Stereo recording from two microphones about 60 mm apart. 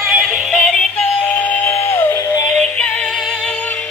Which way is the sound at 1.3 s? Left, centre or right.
Left.